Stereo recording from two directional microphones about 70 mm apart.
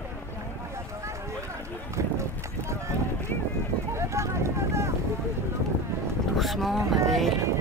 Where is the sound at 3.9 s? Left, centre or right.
Right.